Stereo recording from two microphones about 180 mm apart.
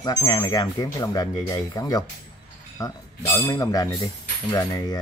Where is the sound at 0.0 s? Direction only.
20° left (ahead or behind).